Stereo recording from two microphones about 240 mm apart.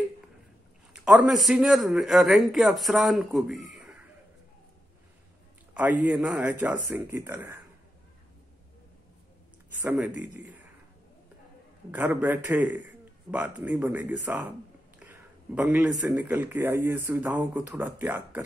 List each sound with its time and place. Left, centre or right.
0.9 s a man's voice: centre
5.8 s a man's voice: centre
9.8 s speech: centre
11.9 s speech: centre
15.0 s a sound: centre
16.1 s speech: centre